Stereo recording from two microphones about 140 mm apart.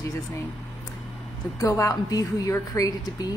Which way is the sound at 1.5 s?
25° left (ahead or behind).